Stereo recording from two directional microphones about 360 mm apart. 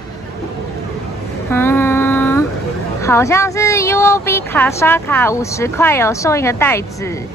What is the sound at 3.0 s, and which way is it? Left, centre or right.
A woman's voice, centre.